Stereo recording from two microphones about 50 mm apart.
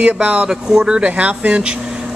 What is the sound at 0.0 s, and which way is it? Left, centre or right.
Speech, right.